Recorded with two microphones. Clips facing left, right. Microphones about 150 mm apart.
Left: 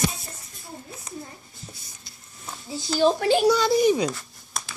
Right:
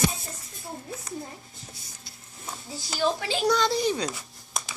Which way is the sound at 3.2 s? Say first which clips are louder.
Left 8 dB; 55° left (ahead or behind).